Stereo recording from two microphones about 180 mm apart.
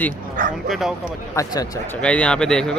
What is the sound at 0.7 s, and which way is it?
Speech, centre (ahead or behind).